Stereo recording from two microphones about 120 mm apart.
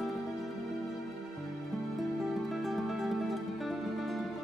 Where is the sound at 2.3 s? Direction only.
Centre (ahead or behind).